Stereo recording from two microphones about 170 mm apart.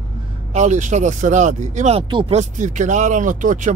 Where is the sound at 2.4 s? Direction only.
45° right (ahead or behind).